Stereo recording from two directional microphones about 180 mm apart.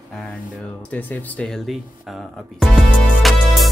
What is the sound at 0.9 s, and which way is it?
Speech, 5° left (ahead or behind).